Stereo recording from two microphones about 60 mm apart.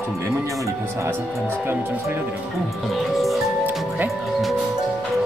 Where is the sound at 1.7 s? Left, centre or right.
Right.